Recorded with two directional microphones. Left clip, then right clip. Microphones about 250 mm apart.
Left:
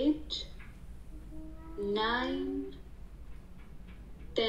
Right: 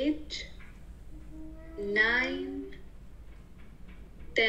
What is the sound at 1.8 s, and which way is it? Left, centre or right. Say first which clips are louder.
Music: right 5 dB; centre.